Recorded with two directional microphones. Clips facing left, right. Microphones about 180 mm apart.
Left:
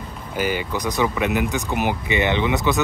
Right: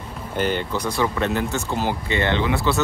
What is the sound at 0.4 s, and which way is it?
Speech, 10° left (ahead or behind).